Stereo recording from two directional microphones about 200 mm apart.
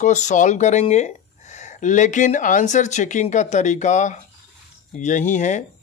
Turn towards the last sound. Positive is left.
turn(degrees=40)  # may be behind; listen again after turning